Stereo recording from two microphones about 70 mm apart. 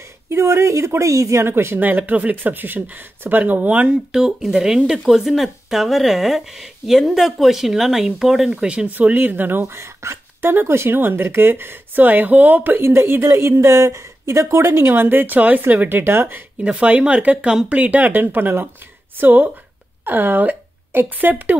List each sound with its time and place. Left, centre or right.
0.3 s speech: right
1.8 s speech: right
16.6 s speech: centre